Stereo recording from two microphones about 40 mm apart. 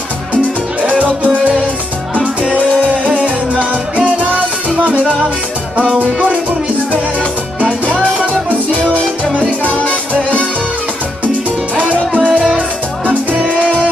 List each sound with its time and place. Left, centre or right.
3.1 s music: right
8.0 s music: right
8.7 s music: left
11.7 s music: right
12.2 s music: left